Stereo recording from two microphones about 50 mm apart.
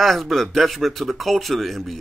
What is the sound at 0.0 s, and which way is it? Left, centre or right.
Speech, centre.